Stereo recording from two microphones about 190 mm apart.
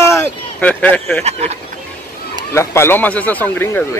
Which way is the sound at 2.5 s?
15° left (ahead or behind).